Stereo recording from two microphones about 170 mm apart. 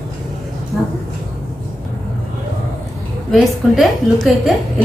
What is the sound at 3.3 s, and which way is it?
A woman's voice, centre (ahead or behind).